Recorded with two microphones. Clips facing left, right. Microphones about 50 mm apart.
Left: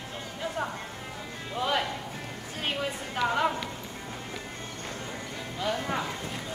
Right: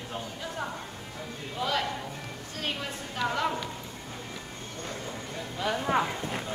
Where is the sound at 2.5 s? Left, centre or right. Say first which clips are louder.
Left 3 dB; centre.